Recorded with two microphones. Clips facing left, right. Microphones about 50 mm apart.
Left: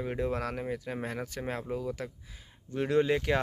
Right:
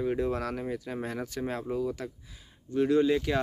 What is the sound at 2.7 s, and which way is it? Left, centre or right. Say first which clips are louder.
Speech: right 3 dB; left.